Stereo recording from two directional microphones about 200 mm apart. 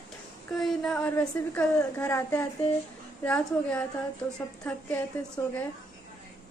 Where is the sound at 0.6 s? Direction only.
5° left (ahead or behind).